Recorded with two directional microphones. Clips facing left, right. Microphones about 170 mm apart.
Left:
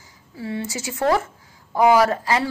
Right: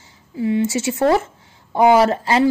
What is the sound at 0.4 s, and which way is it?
A woman's voice, 20° right (ahead or behind).